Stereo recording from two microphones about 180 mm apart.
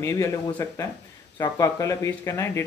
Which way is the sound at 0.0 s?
15° left (ahead or behind).